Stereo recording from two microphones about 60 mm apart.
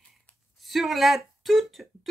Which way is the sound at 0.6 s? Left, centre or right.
Centre.